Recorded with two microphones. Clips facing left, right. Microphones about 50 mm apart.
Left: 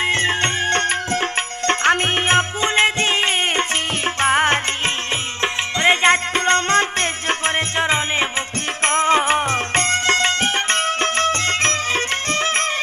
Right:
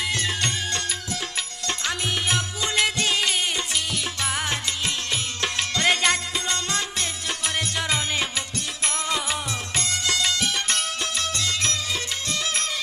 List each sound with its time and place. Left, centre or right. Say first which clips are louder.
0.0 s music: left 7 dB; left
5.4 s music: left 6 dB; left